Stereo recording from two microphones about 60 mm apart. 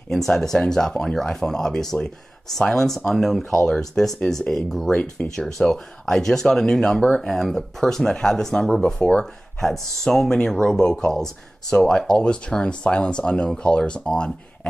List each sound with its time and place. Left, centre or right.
0.1 s speech: centre